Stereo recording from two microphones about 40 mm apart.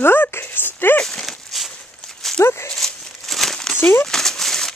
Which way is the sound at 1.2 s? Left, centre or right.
Centre.